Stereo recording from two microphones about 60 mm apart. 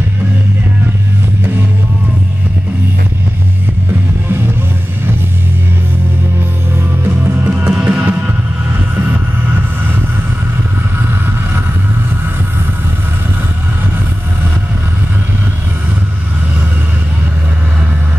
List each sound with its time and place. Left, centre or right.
7.1 s music: right